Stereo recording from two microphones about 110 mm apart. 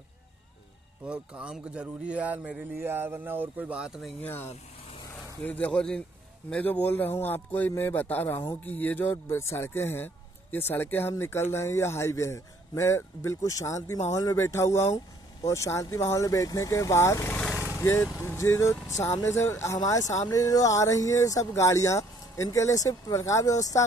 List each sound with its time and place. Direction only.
1.0 s speech: 10° right (ahead or behind)
4.2 s a man's voice: 20° left (ahead or behind)
17.4 s vehicle: 10° left (ahead or behind)
17.8 s speech: 20° left (ahead or behind)